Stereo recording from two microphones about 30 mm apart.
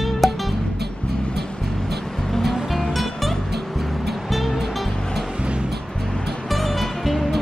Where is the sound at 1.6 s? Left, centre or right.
Centre.